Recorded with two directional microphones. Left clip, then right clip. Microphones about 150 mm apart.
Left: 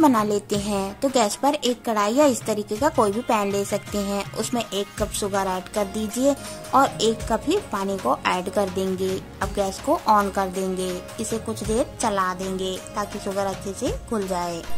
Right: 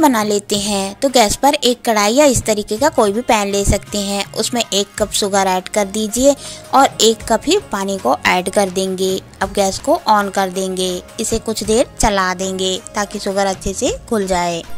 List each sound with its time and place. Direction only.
0.0 s a woman's voice: 20° right (ahead or behind)